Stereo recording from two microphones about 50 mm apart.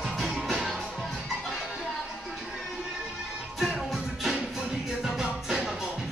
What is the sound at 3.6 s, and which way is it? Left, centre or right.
Music, centre.